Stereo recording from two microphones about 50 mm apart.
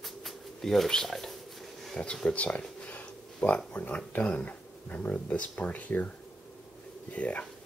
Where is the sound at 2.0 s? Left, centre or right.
Left.